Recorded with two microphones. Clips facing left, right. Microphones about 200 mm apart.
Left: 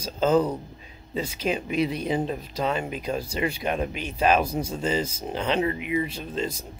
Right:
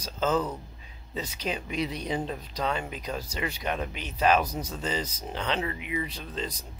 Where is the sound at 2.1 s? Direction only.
20° left (ahead or behind).